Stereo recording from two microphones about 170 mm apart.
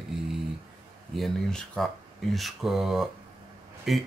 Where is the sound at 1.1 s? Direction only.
Centre (ahead or behind).